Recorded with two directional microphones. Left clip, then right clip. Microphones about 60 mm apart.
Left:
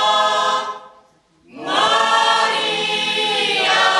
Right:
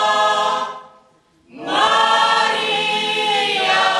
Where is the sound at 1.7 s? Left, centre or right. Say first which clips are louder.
Right 1 dB; centre.